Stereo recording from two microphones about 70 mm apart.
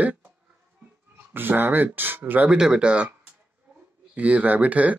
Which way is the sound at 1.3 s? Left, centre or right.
Right.